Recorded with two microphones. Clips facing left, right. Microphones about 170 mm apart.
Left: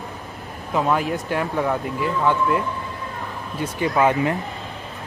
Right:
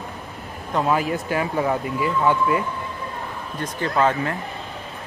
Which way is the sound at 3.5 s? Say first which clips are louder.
Left 2 dB; 10° left (ahead or behind).